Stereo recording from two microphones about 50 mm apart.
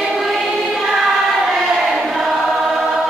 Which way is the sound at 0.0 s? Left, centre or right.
Centre.